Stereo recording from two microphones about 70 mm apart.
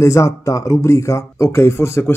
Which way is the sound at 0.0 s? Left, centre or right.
Left.